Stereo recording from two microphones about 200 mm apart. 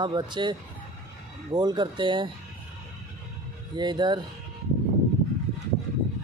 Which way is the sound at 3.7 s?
20° right (ahead or behind).